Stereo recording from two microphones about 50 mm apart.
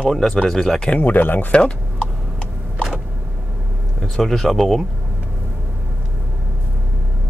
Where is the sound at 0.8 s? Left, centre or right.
Left.